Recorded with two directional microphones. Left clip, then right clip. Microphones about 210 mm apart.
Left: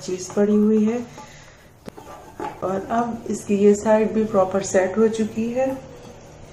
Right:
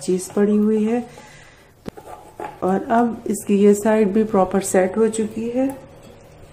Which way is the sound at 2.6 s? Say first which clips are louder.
Right 5 dB; 50° right (ahead or behind).